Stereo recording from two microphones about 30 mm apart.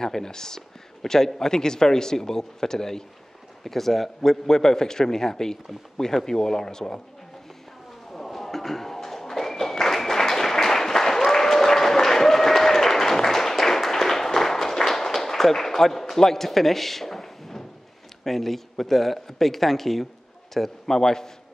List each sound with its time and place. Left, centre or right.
0.0 s speech: left
3.6 s speech: centre
4.5 s speech: centre
8.1 s a sound: centre
18.2 s speech: centre